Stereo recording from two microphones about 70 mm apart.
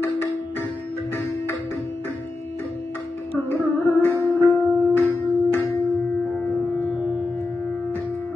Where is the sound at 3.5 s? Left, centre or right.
Left.